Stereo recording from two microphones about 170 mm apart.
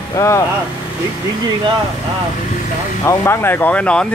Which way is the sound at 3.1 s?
15° left (ahead or behind).